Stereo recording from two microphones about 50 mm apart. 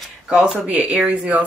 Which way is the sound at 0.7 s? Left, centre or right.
Right.